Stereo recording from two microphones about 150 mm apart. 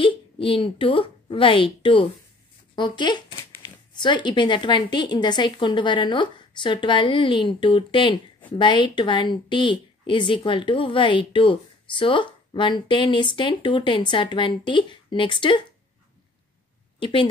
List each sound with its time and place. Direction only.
0.0 s a woman's voice: 35° left (ahead or behind)
17.0 s a woman's voice: 35° left (ahead or behind)